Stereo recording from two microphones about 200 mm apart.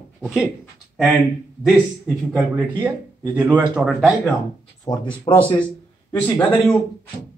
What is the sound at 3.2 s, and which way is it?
Speech, 20° right (ahead or behind).